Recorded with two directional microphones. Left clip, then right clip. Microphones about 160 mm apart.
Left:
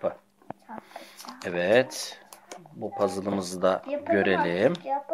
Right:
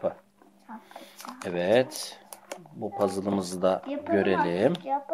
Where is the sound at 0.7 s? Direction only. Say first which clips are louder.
Left 1 dB; 15° left (ahead or behind).